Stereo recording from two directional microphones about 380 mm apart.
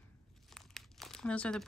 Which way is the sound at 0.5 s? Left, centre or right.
Centre.